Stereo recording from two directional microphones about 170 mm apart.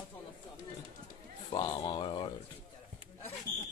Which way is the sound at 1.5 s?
30° left (ahead or behind).